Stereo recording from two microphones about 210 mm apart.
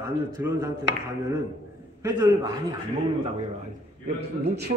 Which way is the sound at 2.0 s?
20° right (ahead or behind).